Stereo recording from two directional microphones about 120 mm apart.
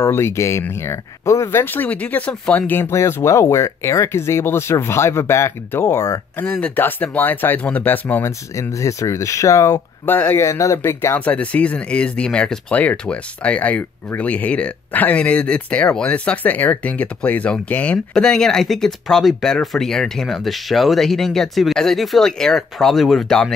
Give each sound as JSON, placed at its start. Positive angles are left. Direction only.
{"t": 0.0, "sound": "speech", "side_deg": 20}
{"t": 6.4, "sound": "speech", "side_deg": 10}
{"t": 10.0, "sound": "speech", "side_deg": 15}